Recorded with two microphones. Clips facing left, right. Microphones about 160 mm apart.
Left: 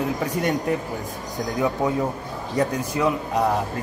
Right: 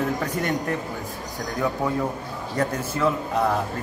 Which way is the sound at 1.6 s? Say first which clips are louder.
Left 2 dB; 20° left (ahead or behind).